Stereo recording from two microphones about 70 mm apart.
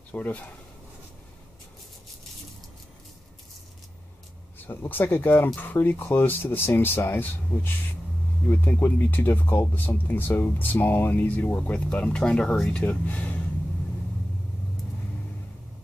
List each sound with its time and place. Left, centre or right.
0.1 s speech: left
4.6 s speech: left; by 12.9 s centre
13.1 s speech: left